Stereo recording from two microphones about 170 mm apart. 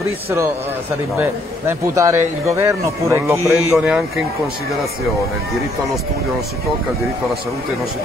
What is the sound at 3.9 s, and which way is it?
Speech, 5° right (ahead or behind).